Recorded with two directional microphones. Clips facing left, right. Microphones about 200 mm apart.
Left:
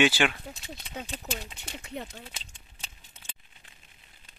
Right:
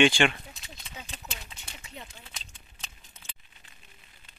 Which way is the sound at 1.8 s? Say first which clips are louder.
Left 8 dB; 60° left (ahead or behind).